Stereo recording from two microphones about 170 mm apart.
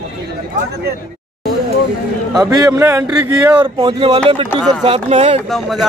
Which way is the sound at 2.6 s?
20° right (ahead or behind).